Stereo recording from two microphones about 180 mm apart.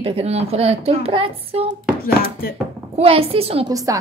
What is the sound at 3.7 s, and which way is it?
Speech, 20° right (ahead or behind).